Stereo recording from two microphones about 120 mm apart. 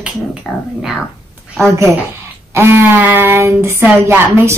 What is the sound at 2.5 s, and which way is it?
Speech, 20° right (ahead or behind).